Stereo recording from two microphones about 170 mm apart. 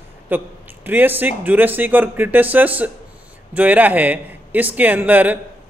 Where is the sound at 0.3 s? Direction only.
10° right (ahead or behind).